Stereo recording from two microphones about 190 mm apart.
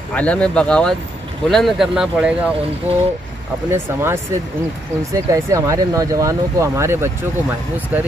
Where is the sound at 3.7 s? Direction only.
10° right (ahead or behind).